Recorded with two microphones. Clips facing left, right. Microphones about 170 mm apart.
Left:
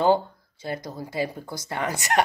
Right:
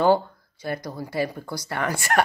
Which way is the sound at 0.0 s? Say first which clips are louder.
Right 1 dB; 20° left (ahead or behind).